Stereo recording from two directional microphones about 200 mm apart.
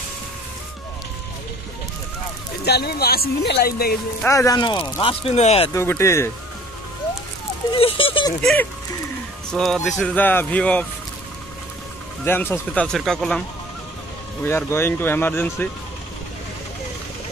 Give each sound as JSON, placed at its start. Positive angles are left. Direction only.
{"t": 2.6, "sound": "speech", "side_deg": 55}
{"t": 4.2, "sound": "speech", "side_deg": 15}
{"t": 5.7, "sound": "speech", "side_deg": 15}
{"t": 7.7, "sound": "speech", "side_deg": 25}
{"t": 9.5, "sound": "speech", "side_deg": 0}
{"t": 12.3, "sound": "speech", "side_deg": 10}
{"t": 14.4, "sound": "speech", "side_deg": 10}